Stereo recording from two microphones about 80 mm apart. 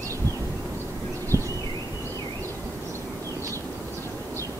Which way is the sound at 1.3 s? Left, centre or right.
Left.